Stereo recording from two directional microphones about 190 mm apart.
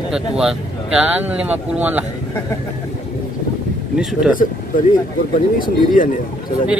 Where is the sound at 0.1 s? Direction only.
5° right (ahead or behind).